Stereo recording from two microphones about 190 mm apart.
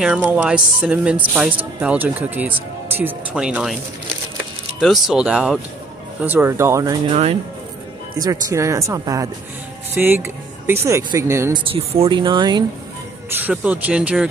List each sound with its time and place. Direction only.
0.0 s speech: 5° right (ahead or behind)
4.7 s speech: centre (ahead or behind); by 7.0 s 15° right (ahead or behind)
8.2 s speech: 15° right (ahead or behind)
11.5 s speech: 30° right (ahead or behind)
13.4 s speech: 10° right (ahead or behind)